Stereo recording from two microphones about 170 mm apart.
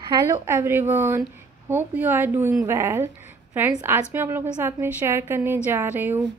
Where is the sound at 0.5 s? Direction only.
15° right (ahead or behind).